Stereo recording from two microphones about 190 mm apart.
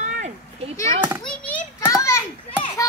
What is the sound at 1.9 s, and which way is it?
Children playing, 15° left (ahead or behind).